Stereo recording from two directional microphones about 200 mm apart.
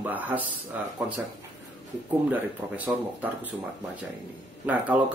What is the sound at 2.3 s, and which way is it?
Speech, 10° right (ahead or behind).